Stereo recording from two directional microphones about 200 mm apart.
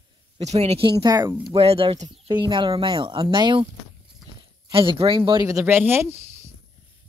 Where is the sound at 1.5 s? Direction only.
30° right (ahead or behind).